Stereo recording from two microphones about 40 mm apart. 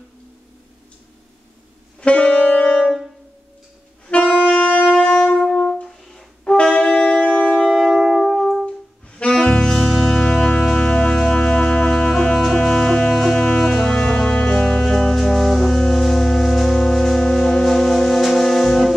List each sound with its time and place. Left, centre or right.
2.0 s music: left
4.1 s saxophone: left
4.8 s wind instrument: centre
5.5 s brass instrument: centre
5.9 s music: centre
6.5 s wind instrument: left
7.7 s music: centre
9.3 s music: centre
13.8 s music: left